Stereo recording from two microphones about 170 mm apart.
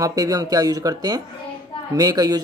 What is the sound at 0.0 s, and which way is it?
Speech, 20° right (ahead or behind).